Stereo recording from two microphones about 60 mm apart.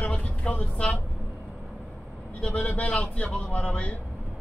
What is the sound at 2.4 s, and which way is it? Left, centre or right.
Speech, left.